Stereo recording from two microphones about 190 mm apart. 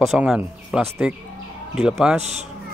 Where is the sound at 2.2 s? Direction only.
35° right (ahead or behind).